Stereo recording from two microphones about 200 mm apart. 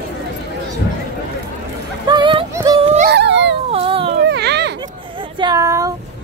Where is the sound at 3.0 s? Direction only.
60° right (ahead or behind).